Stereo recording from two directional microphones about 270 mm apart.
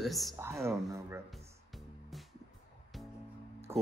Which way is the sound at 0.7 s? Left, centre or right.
Centre.